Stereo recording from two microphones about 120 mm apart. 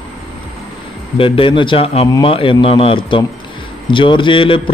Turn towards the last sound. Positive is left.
turn(degrees=45)  # may be behind; listen again after turning